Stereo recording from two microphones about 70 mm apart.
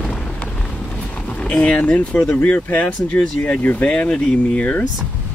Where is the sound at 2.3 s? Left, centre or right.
Left.